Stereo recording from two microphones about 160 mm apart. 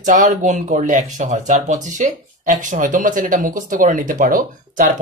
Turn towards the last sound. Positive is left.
turn(degrees=-55)  # may be behind; listen again after turning